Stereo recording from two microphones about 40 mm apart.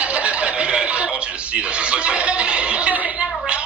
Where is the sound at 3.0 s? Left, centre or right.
Right.